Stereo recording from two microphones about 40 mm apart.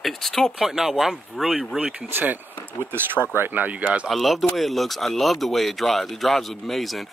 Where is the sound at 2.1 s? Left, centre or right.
Right.